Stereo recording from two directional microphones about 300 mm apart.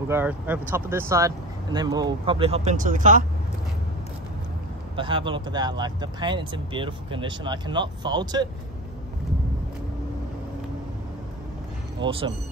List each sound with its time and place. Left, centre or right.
0.1 s speech: centre; by 3.2 s right
4.9 s speech: centre
12.0 s speech: centre